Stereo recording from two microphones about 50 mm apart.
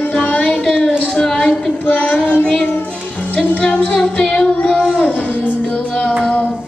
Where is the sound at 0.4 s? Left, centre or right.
Centre.